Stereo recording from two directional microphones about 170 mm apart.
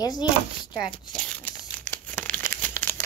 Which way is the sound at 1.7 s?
10° left (ahead or behind).